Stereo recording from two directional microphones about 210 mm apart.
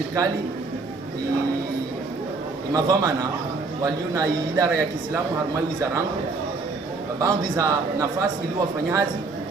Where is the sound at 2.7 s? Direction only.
15° right (ahead or behind).